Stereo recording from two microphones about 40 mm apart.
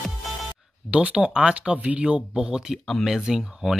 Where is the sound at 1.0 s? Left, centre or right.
Right.